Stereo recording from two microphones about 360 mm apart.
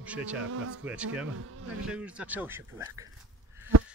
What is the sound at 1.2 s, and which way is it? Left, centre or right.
Speech, right.